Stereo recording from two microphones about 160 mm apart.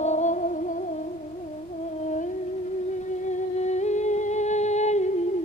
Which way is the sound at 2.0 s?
50° left (ahead or behind).